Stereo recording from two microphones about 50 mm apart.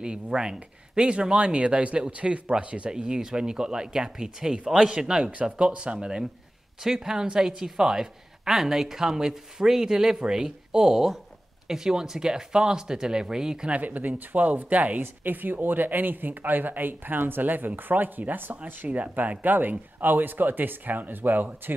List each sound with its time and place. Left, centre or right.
0.0 s a woman's voice: centre
6.8 s a woman's voice: centre
13.7 s speech: right